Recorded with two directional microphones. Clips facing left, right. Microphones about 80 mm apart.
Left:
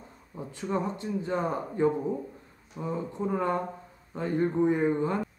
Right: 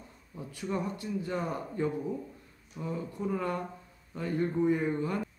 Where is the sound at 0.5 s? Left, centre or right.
Left.